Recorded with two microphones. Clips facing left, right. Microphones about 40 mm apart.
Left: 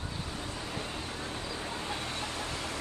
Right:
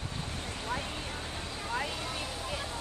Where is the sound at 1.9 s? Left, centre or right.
Left.